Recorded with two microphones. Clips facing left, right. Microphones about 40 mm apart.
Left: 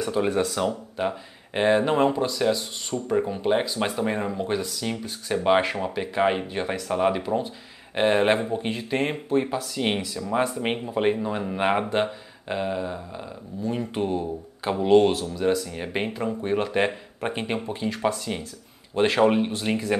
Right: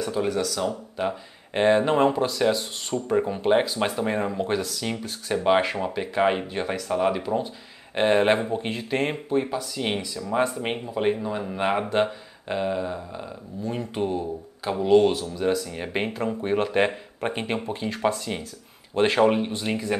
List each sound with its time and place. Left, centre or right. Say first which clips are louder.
0.0 s speech: left 1 dB; centre
0.3 s speech: left 2 dB; left
0.9 s speech: even; centre
5.3 s speech: even; centre